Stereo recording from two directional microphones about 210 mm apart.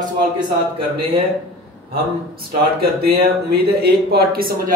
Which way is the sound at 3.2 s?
50° right (ahead or behind).